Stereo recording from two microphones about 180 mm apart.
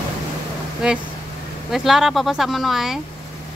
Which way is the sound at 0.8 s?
5° right (ahead or behind).